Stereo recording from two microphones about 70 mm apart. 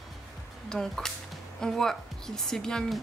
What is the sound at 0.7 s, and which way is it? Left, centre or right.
Speech, centre.